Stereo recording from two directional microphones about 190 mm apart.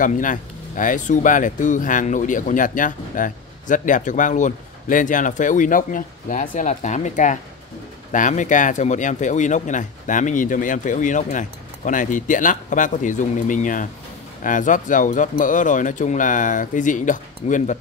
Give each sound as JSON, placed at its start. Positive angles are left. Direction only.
{"t": 0.0, "sound": "speech", "side_deg": 45}